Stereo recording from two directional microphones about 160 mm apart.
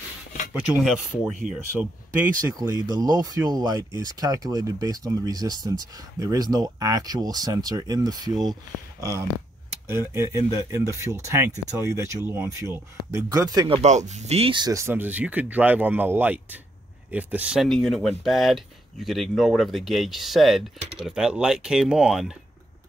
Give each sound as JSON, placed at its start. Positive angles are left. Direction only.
{"t": 0.5, "sound": "speech", "side_deg": -5}
{"t": 2.4, "sound": "speech", "side_deg": -20}
{"t": 9.8, "sound": "speech", "side_deg": -15}
{"t": 13.7, "sound": "speech", "side_deg": -45}